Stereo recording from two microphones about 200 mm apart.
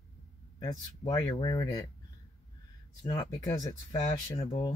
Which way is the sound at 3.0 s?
20° left (ahead or behind).